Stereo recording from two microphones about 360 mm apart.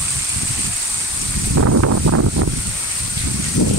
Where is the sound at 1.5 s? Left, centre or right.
Right.